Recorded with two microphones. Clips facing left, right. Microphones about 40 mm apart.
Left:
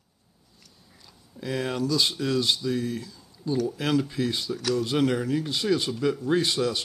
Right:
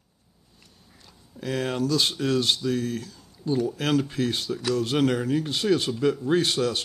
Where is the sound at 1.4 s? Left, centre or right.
Right.